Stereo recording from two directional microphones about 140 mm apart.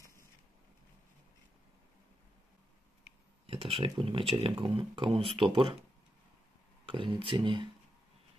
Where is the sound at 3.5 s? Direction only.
40° right (ahead or behind).